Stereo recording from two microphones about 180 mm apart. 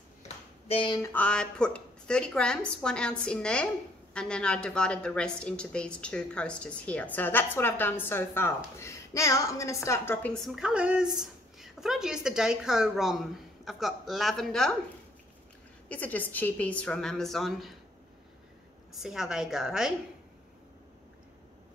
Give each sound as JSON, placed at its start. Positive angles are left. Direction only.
{"t": 0.7, "sound": "speech", "side_deg": 30}
{"t": 1.0, "sound": "a woman's voice", "side_deg": 10}
{"t": 10.3, "sound": "a woman's voice", "side_deg": 0}
{"t": 15.9, "sound": "a woman's voice", "side_deg": 10}
{"t": 19.0, "sound": "a woman's voice", "side_deg": 0}